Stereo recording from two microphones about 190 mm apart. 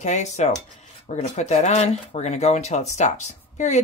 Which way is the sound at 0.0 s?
40° left (ahead or behind).